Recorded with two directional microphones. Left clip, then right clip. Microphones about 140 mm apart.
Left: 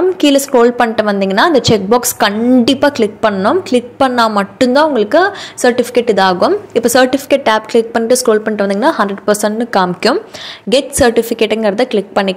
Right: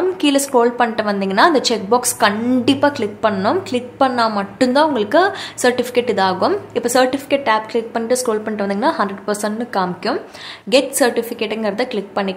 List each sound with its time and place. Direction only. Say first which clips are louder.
0.2 s a woman's voice: left 5 dB; 30° left (ahead or behind)